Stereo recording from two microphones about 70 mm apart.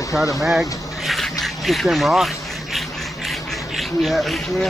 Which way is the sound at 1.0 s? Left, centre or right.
Centre.